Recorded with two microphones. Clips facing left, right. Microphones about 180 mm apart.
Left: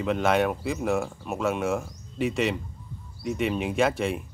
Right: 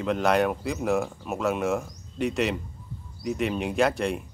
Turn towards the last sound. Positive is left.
turn(degrees=0)  # may be behind; listen again after turning